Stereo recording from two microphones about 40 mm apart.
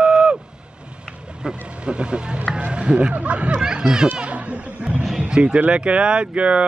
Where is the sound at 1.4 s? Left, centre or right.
Right.